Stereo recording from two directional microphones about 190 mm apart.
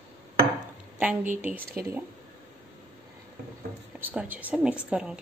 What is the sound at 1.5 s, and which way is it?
Speech, 50° right (ahead or behind).